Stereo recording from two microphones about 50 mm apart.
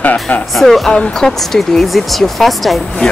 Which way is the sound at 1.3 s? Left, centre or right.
Centre.